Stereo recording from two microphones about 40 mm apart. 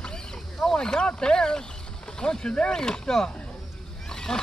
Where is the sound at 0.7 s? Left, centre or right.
Left.